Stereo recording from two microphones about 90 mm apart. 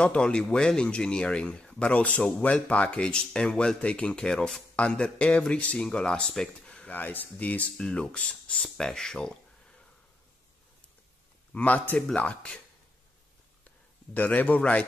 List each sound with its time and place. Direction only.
0.0 s speech: 10° left (ahead or behind)
11.5 s speech: 15° left (ahead or behind)
14.1 s a man's voice: 20° left (ahead or behind)